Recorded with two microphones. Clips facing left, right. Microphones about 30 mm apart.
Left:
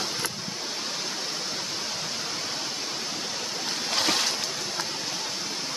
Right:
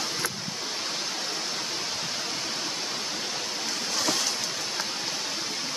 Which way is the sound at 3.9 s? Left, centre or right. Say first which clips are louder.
Left 3 dB; left.